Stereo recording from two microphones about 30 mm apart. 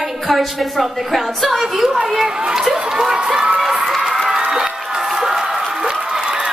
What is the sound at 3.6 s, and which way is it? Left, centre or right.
Run, centre.